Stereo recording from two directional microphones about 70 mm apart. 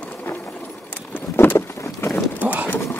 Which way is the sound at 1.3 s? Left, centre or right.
Left.